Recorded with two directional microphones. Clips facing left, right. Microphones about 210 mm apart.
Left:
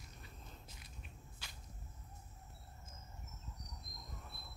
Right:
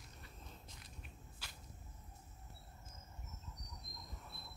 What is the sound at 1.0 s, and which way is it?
Biting, 5° right (ahead or behind).